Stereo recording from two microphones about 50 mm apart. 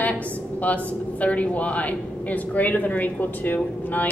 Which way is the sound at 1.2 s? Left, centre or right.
Left.